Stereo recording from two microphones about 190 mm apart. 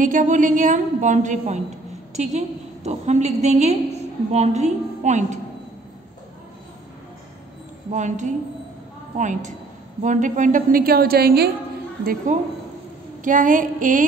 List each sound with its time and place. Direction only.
0.0 s a woman's voice: 40° right (ahead or behind)
7.9 s a woman's voice: 40° right (ahead or behind)